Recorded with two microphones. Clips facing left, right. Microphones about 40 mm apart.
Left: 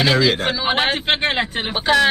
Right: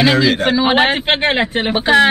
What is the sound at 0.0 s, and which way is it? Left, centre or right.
A man's voice, centre.